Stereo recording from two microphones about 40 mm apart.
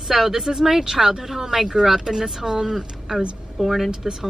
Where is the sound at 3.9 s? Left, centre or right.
Centre.